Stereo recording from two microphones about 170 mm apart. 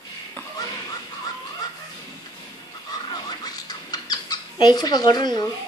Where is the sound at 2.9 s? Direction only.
20° left (ahead or behind).